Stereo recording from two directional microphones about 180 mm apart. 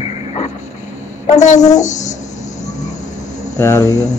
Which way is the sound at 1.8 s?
40° left (ahead or behind).